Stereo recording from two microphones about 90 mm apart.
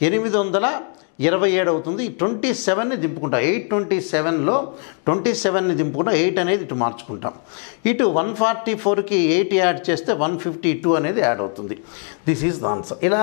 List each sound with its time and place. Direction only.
0.0 s a man's voice: 15° left (ahead or behind)